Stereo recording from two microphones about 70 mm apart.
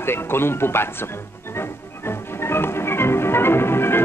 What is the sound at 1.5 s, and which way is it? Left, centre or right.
Music, left.